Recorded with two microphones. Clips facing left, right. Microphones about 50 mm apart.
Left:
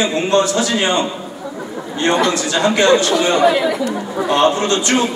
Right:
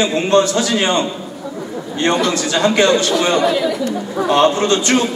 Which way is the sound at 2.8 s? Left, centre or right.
Left.